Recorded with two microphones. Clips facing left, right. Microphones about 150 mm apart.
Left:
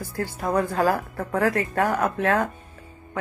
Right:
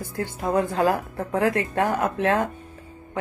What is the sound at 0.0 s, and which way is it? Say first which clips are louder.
Speech: even; 20° right (ahead or behind).